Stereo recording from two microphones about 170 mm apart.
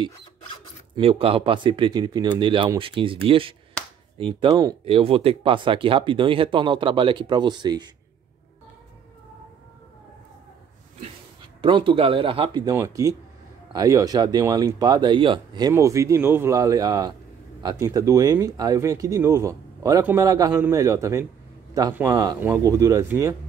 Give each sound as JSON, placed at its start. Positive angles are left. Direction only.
{"t": 0.9, "sound": "speech", "side_deg": -35}
{"t": 4.8, "sound": "speech", "side_deg": -35}
{"t": 11.6, "sound": "speech", "side_deg": -30}